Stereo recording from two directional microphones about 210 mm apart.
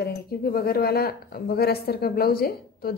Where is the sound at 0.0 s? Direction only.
45° left (ahead or behind).